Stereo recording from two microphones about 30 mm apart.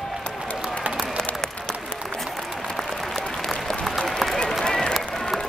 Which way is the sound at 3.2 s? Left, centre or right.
Left.